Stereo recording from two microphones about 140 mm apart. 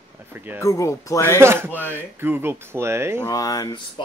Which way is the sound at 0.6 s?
20° left (ahead or behind).